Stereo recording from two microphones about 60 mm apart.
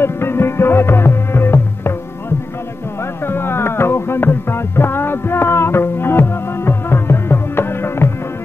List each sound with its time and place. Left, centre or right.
0.0 s music: left